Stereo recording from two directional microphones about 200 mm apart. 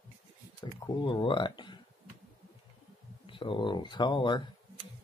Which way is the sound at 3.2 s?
25° left (ahead or behind).